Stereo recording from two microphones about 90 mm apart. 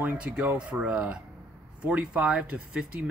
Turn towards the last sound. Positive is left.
turn(degrees=-10)  # may be behind; listen again after turning